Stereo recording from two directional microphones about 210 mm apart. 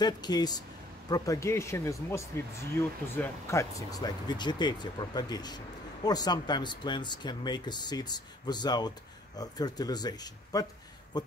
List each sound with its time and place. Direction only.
0.0 s speech: 20° left (ahead or behind)